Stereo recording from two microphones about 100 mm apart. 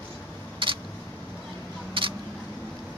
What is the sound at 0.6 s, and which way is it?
Single-lens reflex camera, 60° right (ahead or behind).